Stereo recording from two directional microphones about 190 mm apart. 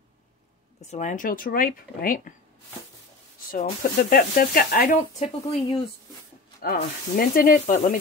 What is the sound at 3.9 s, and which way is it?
Speech, 50° left (ahead or behind).